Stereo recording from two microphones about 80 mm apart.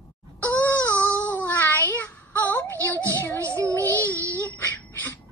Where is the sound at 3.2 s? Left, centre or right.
Left.